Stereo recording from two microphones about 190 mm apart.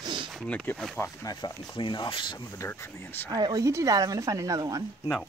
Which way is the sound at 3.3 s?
20° right (ahead or behind).